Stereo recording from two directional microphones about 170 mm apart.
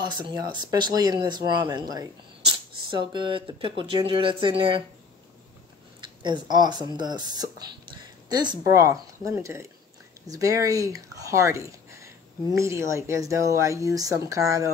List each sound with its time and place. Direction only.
0.2 s speech: 25° right (ahead or behind)
5.9 s a sound: 25° right (ahead or behind)
6.5 s speech: 25° right (ahead or behind)